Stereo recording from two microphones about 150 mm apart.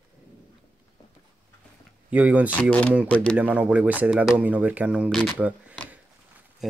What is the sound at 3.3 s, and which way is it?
Speech, 10° right (ahead or behind).